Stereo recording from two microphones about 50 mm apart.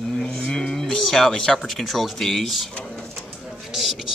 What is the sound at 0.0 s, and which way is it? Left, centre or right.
Moo, centre.